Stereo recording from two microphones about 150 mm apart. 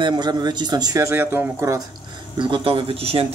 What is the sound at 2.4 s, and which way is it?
Speech, 35° right (ahead or behind).